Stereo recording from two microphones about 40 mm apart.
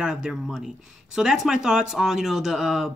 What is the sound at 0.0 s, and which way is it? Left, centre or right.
Speech, centre.